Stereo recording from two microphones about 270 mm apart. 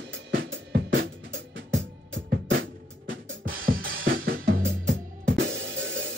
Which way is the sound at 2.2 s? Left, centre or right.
Right.